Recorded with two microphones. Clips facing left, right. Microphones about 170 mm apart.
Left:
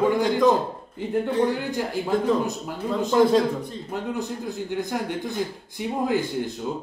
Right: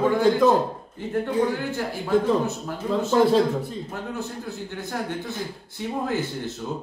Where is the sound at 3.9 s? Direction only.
15° left (ahead or behind).